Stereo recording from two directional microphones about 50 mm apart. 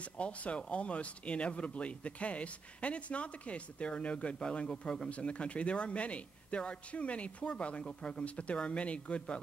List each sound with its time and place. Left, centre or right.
0.2 s speech: left